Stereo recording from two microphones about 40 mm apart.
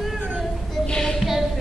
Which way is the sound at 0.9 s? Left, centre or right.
Left.